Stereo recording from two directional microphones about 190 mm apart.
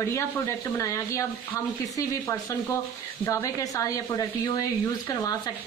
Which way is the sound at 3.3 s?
15° left (ahead or behind).